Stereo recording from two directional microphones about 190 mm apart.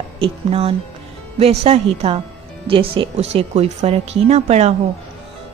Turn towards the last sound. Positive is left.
turn(degrees=-35)  # may be behind; listen again after turning